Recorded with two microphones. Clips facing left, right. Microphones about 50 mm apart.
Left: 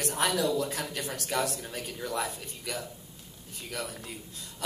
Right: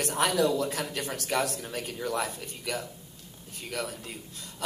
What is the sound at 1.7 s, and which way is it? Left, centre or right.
A man's voice, right.